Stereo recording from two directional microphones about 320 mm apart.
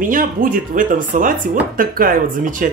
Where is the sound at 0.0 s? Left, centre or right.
Right.